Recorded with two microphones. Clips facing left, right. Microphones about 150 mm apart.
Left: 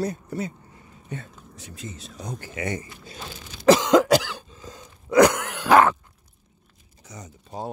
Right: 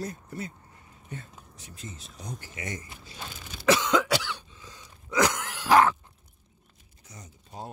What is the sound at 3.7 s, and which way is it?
Cough, 40° left (ahead or behind).